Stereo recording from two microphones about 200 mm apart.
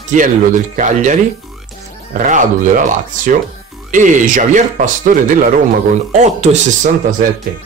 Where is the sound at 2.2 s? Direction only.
40° right (ahead or behind).